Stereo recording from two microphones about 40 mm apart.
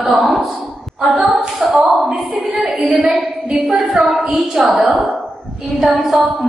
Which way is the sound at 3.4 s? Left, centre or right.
Right.